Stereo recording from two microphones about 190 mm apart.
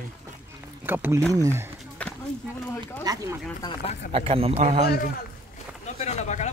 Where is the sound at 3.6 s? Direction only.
30° left (ahead or behind).